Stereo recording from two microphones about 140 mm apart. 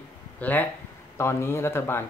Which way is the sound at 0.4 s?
10° left (ahead or behind).